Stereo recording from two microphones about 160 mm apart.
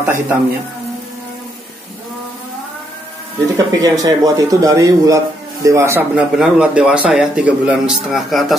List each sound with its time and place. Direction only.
0.0 s speech: 10° right (ahead or behind)
3.5 s a man's voice: 20° right (ahead or behind); by 8.5 s centre (ahead or behind)